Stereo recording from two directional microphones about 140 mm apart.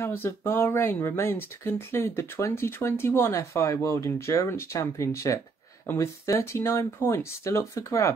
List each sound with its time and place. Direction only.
0.0 s speech: 15° left (ahead or behind)